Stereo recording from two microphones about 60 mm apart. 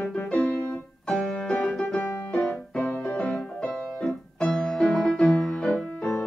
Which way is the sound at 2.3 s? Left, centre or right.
Centre.